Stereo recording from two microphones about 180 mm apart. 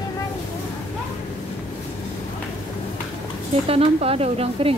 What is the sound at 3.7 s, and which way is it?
Speech, 35° right (ahead or behind).